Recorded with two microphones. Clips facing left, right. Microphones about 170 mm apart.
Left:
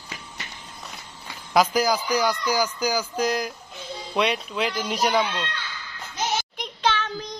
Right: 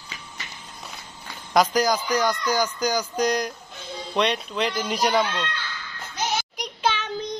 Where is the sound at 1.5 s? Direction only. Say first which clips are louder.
Even; 5° left (ahead or behind).